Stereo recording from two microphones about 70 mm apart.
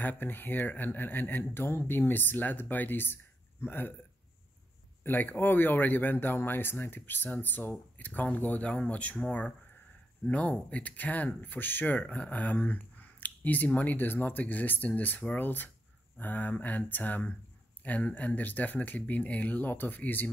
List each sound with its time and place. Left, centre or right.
0.0 s a man's voice: left
5.0 s speech: left
10.2 s speech: centre